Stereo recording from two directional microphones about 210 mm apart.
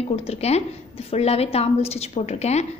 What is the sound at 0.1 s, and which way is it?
A woman's voice, 30° left (ahead or behind).